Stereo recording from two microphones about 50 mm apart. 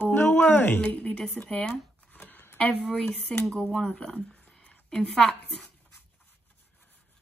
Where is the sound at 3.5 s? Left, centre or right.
Centre.